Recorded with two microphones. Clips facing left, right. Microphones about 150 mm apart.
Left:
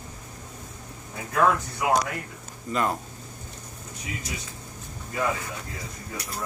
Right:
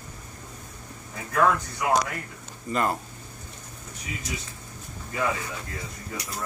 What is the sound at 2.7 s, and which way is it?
Speech, centre (ahead or behind).